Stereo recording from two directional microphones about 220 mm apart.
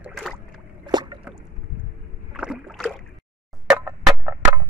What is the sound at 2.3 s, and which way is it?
Rowboat, 5° right (ahead or behind).